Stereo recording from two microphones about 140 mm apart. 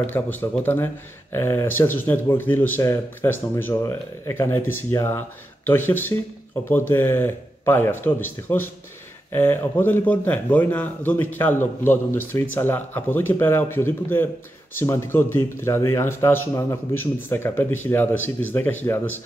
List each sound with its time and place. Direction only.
0.0 s a man's voice: 15° left (ahead or behind)